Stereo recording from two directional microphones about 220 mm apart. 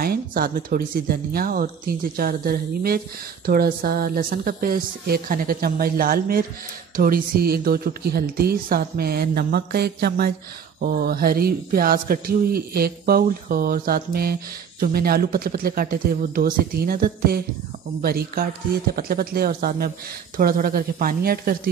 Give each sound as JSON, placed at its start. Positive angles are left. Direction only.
{"t": 0.0, "sound": "speech", "side_deg": -45}